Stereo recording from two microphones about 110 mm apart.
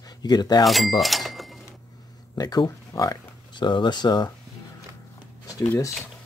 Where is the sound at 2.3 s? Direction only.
35° left (ahead or behind).